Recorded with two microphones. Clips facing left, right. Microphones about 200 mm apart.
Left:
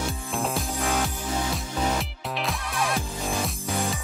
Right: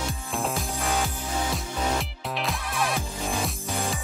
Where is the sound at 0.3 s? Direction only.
Centre (ahead or behind).